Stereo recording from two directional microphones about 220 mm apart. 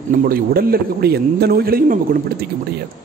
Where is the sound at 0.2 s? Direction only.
40° right (ahead or behind).